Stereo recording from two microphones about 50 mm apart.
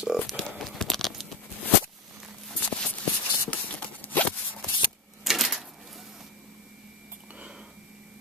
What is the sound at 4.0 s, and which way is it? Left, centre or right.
Zipper, left.